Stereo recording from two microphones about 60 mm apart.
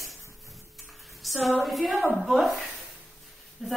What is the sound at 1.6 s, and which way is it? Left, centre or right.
Speech, centre.